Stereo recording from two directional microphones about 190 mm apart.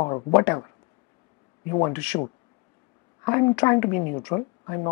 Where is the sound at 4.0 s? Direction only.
30° left (ahead or behind).